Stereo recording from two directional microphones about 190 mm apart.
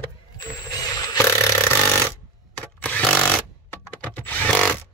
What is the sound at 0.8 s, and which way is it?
Chainsaw, 15° left (ahead or behind).